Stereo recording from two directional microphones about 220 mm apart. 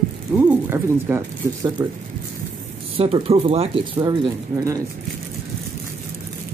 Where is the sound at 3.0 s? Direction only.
25° right (ahead or behind).